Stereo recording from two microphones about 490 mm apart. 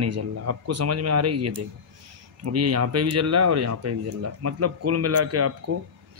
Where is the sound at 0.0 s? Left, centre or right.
Right.